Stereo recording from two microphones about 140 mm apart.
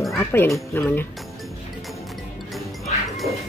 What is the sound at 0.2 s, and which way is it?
Speech, 15° left (ahead or behind).